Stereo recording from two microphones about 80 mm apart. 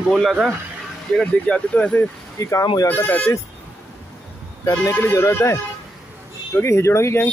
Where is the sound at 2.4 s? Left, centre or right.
Left.